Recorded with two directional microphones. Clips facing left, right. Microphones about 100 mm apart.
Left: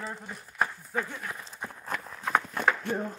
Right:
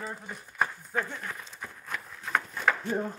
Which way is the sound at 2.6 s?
60° left (ahead or behind).